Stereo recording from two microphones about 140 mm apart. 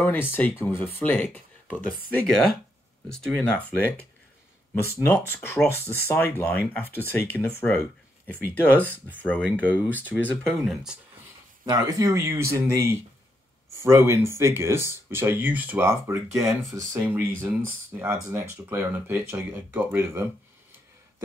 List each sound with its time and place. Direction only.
0.0 s speech: 15° left (ahead or behind)
3.1 s speech: 5° left (ahead or behind)
10.6 s speech: 5° right (ahead or behind)
11.6 s speech: 30° right (ahead or behind)
17.0 s speech: 10° right (ahead or behind)